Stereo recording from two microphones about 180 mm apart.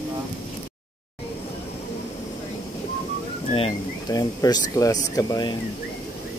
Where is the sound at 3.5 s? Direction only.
30° left (ahead or behind).